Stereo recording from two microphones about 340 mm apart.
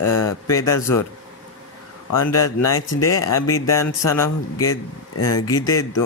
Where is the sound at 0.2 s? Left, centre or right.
Centre.